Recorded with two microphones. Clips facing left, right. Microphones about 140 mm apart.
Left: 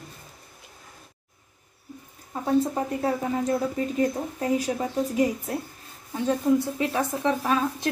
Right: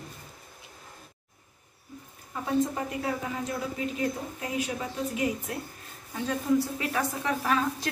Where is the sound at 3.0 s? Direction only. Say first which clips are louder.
Left 6 dB; 45° left (ahead or behind).